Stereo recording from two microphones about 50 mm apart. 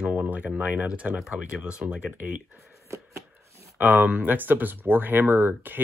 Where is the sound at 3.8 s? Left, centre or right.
Right.